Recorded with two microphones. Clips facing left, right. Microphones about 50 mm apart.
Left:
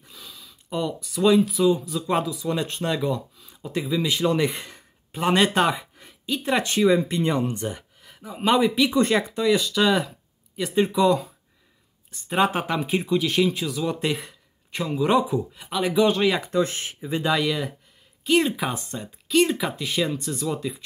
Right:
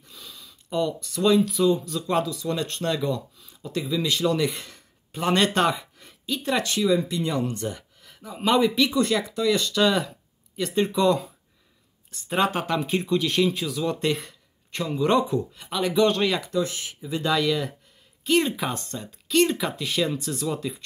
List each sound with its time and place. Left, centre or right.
0.1 s speech: centre
6.7 s speech: left; by 8.9 s centre
8.9 s speech: left
9.5 s speech: centre
16.4 s speech: left
17.2 s speech: centre